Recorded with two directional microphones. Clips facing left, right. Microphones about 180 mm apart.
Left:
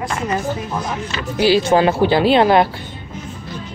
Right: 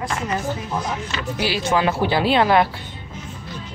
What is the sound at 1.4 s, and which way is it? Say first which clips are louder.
Speech: left 8 dB; 30° left (ahead or behind).